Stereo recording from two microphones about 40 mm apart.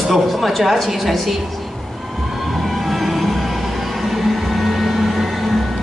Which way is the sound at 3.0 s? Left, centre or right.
Centre.